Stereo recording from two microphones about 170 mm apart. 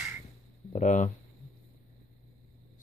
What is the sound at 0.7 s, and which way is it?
Speech, 45° left (ahead or behind).